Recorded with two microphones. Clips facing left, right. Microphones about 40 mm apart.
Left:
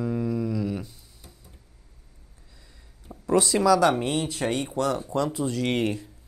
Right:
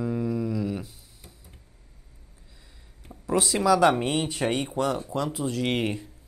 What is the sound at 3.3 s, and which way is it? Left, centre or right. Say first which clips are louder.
Speech: left 2 dB; centre.